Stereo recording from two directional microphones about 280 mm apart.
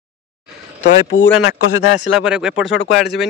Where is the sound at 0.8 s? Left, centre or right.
Left.